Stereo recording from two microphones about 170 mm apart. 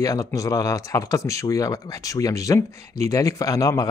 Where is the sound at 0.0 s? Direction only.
20° left (ahead or behind).